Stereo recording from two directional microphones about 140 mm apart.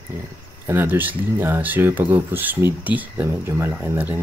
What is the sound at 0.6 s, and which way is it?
Speech, 15° right (ahead or behind).